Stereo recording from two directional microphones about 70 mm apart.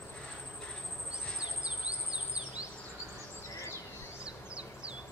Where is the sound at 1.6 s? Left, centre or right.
Centre.